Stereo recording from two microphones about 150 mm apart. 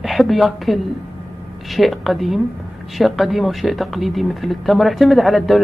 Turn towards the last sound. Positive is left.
turn(degrees=0)  # may be behind; listen again after turning